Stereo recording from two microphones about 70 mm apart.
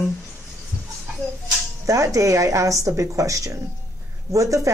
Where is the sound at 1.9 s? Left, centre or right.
Right.